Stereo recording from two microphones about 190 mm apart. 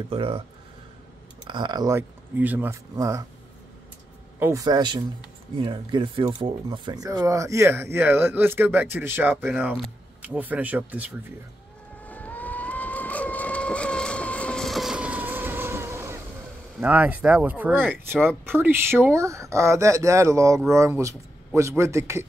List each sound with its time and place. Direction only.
0.1 s a man's voice: 30° right (ahead or behind)
1.5 s speech: 25° right (ahead or behind)
4.4 s a man's voice: 15° right (ahead or behind)
12.0 s vehicle: 10° left (ahead or behind); by 16.2 s 15° right (ahead or behind)
16.7 s speech: 10° right (ahead or behind)